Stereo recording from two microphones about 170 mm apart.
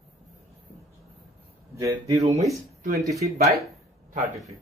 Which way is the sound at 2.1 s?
35° right (ahead or behind).